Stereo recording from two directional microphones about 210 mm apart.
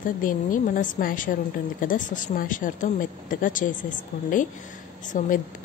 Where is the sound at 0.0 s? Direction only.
40° left (ahead or behind).